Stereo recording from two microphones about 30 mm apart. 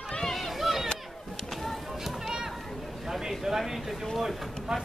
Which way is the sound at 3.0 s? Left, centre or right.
Centre.